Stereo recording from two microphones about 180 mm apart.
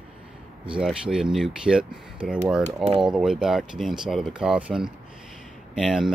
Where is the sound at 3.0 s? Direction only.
5° right (ahead or behind).